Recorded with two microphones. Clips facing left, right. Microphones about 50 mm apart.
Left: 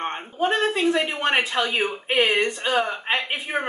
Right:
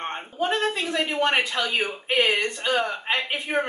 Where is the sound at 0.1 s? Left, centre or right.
Centre.